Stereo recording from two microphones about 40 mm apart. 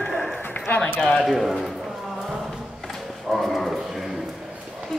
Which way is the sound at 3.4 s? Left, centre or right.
Centre.